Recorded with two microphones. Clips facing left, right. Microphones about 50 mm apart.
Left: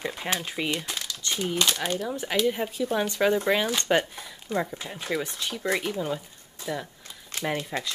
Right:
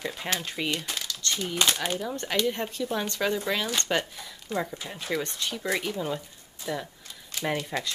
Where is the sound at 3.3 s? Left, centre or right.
Left.